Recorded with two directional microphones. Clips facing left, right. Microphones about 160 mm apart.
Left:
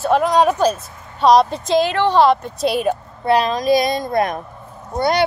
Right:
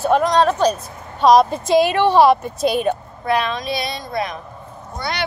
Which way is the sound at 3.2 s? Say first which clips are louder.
Left 5 dB; 35° left (ahead or behind).